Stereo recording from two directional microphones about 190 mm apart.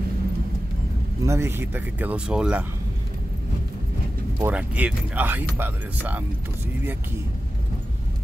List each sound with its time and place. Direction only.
1.2 s speech: 15° right (ahead or behind)
4.4 s speech: 10° right (ahead or behind)